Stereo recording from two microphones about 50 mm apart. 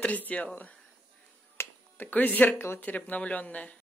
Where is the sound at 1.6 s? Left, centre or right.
Left.